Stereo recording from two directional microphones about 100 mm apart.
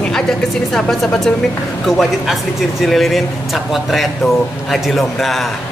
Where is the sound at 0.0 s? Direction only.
5° left (ahead or behind).